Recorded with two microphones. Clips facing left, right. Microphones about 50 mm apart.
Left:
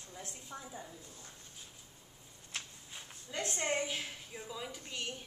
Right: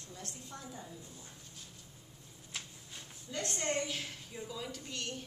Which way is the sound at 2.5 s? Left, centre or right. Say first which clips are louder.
Left 1 dB; centre.